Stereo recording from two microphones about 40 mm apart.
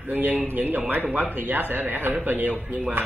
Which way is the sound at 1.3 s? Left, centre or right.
Right.